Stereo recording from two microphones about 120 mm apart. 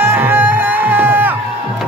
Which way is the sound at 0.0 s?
15° right (ahead or behind).